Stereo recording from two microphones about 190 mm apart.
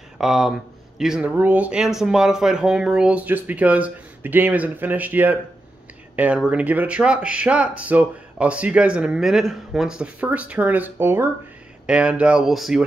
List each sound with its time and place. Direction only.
0.2 s speech: centre (ahead or behind)